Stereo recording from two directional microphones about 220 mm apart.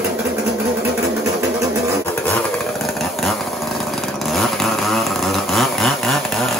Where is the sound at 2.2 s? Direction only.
5° left (ahead or behind).